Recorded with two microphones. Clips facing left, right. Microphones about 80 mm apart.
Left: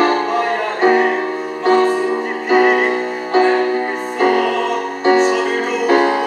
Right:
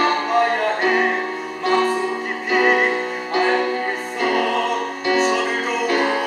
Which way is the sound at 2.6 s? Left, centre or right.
Centre.